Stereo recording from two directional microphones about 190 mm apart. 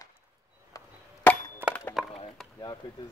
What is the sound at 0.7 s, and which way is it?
Chop, 20° left (ahead or behind).